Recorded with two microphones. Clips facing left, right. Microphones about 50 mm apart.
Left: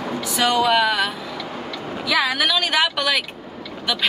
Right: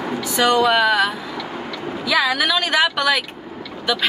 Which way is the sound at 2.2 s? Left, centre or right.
Centre.